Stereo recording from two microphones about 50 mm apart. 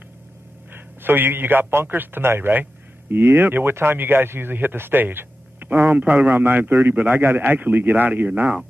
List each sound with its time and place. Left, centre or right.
0.7 s a man's voice: right